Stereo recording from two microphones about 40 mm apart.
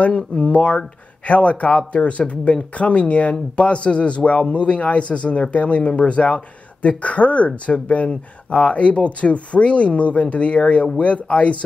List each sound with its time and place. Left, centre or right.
0.0 s speech: left
0.5 s speech: left